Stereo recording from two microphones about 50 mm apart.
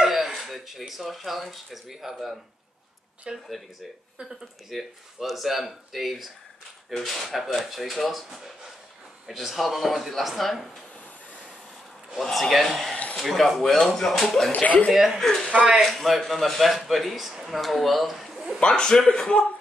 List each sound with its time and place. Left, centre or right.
0.0 s speech: centre
3.3 s speech: centre
4.2 s speech: centre
12.2 s speech: centre
12.9 s a sound: left
13.2 s speech: centre
14.5 s speech: left
14.9 s speech: centre
18.6 s a man's voice: centre